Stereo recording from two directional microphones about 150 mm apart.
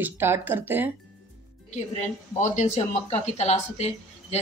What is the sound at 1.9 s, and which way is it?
A woman's voice, 50° left (ahead or behind).